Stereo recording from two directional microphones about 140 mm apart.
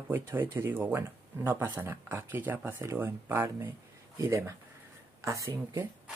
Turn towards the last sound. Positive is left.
turn(degrees=-25)  # may be behind; listen again after turning